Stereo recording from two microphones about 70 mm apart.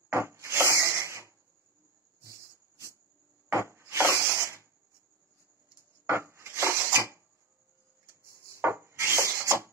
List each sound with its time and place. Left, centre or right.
0.1 s wood: right
3.5 s rub: right
6.0 s wood: right
8.2 s rub: right